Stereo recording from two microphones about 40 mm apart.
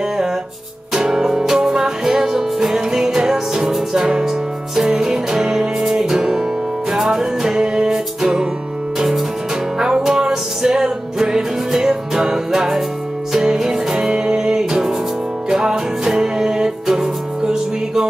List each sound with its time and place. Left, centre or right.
0.9 s music: centre
9.8 s music: centre